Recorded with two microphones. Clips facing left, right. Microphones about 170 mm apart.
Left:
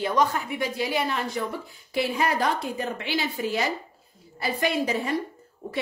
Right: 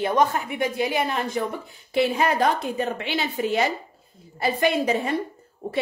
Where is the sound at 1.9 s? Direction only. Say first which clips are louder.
Right 4 dB; 25° right (ahead or behind).